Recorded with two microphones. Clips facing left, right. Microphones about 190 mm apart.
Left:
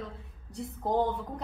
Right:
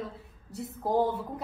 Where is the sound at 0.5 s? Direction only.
5° right (ahead or behind).